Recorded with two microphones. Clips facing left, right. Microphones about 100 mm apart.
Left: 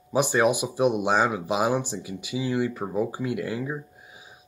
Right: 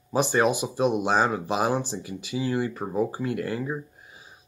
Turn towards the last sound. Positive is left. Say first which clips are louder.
# even
turn(degrees=15)  # may be behind; listen again after turning